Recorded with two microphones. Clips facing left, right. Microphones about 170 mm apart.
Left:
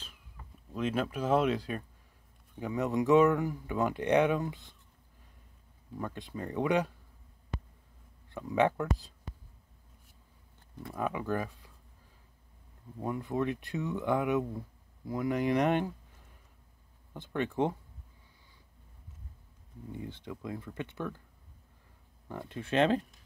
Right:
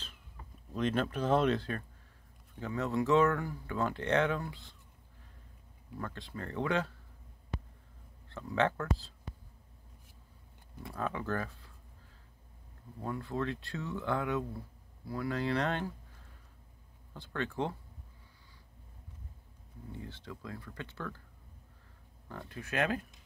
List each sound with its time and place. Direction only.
0.7 s speech: 5° left (ahead or behind)
5.9 s speech: 15° left (ahead or behind)
8.3 s speech: 15° left (ahead or behind)
11.0 s speech: 15° left (ahead or behind)
13.0 s speech: 15° left (ahead or behind)
17.1 s speech: 15° left (ahead or behind)
19.9 s speech: 15° left (ahead or behind)
22.5 s speech: 25° left (ahead or behind)